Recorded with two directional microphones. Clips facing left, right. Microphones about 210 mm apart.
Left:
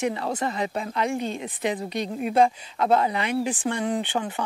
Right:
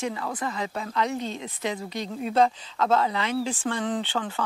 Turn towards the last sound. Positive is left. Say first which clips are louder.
# left 2 dB
turn(degrees=15)  # may be behind; listen again after turning